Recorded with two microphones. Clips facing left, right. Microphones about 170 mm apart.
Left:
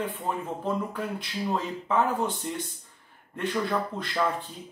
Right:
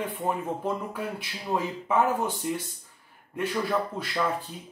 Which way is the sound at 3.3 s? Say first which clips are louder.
Right 1 dB; 5° right (ahead or behind).